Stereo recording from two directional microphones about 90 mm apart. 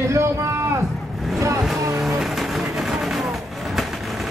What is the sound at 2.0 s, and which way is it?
Vehicle, centre (ahead or behind).